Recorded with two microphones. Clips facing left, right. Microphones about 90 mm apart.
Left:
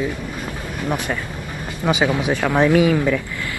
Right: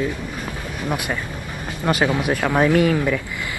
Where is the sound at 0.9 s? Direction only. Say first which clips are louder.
Left 1 dB; 10° right (ahead or behind).